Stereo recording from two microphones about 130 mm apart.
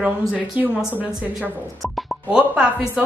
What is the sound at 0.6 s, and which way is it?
Speech, 10° right (ahead or behind).